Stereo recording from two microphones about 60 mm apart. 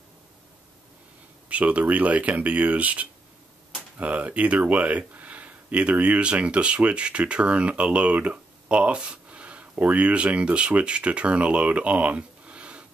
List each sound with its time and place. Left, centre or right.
1.5 s speech: right